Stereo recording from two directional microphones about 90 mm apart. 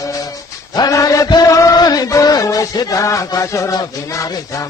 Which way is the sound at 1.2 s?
50° left (ahead or behind).